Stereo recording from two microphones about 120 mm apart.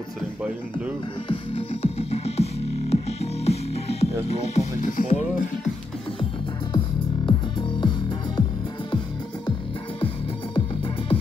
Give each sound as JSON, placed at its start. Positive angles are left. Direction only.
{"t": 0.4, "sound": "speech", "side_deg": -10}
{"t": 1.3, "sound": "music", "side_deg": 55}
{"t": 7.2, "sound": "music", "side_deg": 40}
{"t": 9.9, "sound": "music", "side_deg": 50}